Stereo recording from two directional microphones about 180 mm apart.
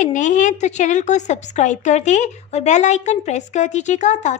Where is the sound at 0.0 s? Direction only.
45° left (ahead or behind).